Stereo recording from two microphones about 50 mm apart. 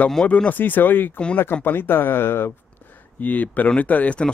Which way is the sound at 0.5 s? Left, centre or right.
Left.